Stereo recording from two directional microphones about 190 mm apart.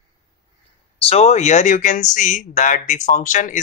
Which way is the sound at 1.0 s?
35° left (ahead or behind).